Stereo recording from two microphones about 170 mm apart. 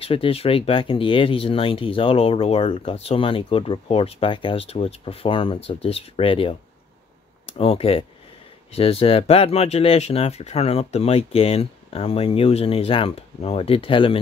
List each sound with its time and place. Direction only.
0.0 s speech: 35° left (ahead or behind)